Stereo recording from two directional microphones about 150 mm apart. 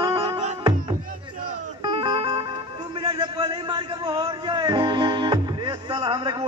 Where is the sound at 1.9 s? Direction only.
35° right (ahead or behind).